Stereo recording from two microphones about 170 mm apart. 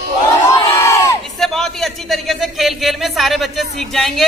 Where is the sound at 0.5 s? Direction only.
20° left (ahead or behind).